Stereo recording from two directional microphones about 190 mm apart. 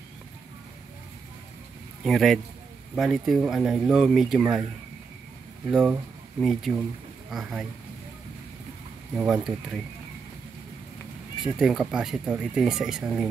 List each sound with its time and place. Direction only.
2.0 s speech: centre (ahead or behind)
5.7 s speech: 5° right (ahead or behind)
9.1 s speech: 5° right (ahead or behind)
11.4 s speech: 5° right (ahead or behind)